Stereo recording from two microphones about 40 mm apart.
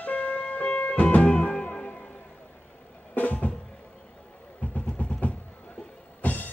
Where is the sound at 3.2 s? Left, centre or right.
Left.